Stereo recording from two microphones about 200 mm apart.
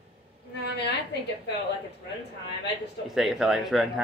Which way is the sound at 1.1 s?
60° left (ahead or behind).